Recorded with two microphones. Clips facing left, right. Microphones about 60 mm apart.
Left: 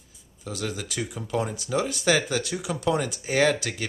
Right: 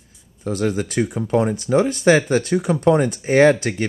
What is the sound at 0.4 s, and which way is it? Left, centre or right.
Speech, right.